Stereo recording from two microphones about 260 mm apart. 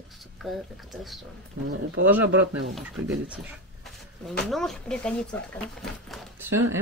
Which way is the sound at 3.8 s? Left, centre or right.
Centre.